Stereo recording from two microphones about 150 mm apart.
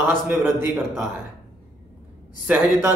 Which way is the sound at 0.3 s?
15° right (ahead or behind).